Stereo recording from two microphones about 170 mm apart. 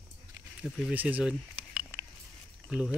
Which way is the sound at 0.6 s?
5° right (ahead or behind).